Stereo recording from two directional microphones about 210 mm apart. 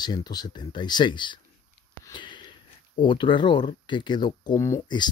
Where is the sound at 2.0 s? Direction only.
20° left (ahead or behind).